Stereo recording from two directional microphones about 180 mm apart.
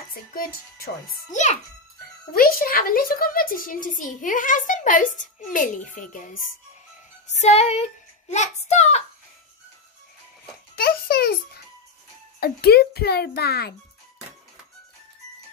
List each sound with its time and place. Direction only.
0.1 s speech: 55° left (ahead or behind)
1.3 s child singing: 40° left (ahead or behind)
2.3 s a woman's voice: 55° left (ahead or behind)
7.3 s child singing: 40° left (ahead or behind)
10.8 s music: 60° left (ahead or behind)
12.4 s a child's voice: 60° left (ahead or behind)